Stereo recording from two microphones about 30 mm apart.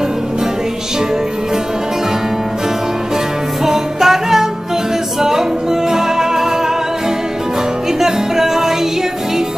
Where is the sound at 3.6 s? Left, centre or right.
Centre.